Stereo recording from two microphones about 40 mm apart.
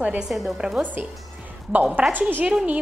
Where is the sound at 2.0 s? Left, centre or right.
Right.